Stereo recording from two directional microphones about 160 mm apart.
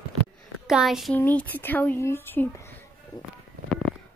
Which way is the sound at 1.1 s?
10° left (ahead or behind).